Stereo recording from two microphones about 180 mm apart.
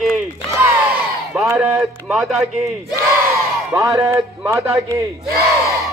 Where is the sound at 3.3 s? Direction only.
15° right (ahead or behind).